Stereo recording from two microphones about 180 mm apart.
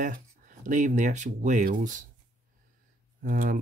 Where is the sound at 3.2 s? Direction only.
50° right (ahead or behind).